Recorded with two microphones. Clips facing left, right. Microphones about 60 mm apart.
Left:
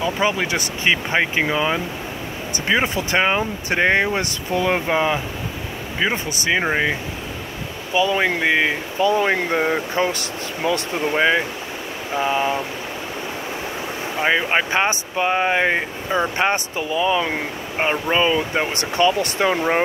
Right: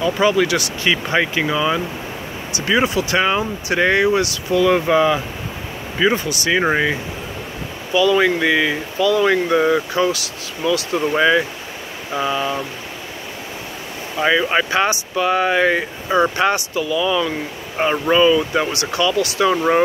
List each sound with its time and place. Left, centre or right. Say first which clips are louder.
0.0 s speech: right 4 dB; left
7.9 s speech: right 4 dB; left
11.0 s speech: right 3 dB; left
14.2 s speech: right 2 dB; left